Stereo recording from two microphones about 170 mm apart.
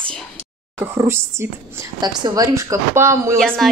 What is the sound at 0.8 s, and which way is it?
Speech, 15° right (ahead or behind).